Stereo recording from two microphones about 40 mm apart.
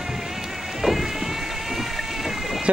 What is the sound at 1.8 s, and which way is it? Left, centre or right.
Boat, centre.